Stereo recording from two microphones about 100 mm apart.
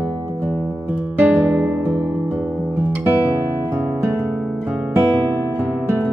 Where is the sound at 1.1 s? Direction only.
15° right (ahead or behind).